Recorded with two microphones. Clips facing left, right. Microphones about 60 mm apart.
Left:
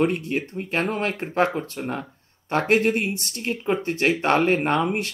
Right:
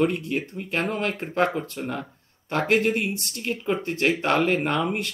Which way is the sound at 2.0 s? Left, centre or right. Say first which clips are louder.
Left 1 dB; centre.